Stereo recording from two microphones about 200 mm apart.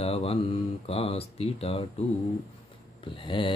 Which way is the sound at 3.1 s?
25° left (ahead or behind).